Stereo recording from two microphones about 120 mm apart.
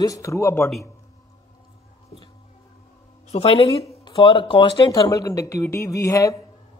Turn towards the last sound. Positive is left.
turn(degrees=30)  # may be behind; listen again after turning